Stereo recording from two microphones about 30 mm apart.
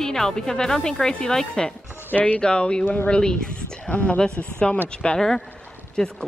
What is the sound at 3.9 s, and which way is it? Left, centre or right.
Speech, left.